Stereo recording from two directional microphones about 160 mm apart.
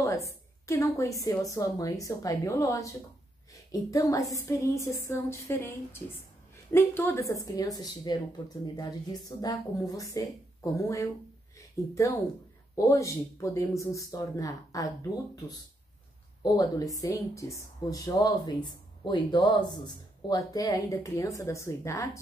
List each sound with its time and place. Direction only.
0.0 s a woman's voice: 20° left (ahead or behind)
16.9 s a woman's voice: 20° left (ahead or behind)